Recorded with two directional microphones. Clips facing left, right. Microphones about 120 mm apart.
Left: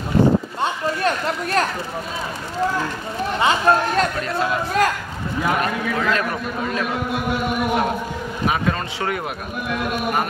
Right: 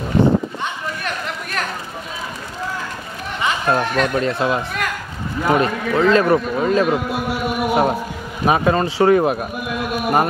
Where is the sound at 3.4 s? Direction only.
35° left (ahead or behind).